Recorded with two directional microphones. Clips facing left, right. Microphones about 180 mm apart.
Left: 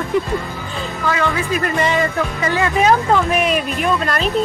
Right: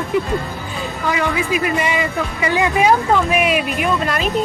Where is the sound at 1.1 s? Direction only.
15° right (ahead or behind).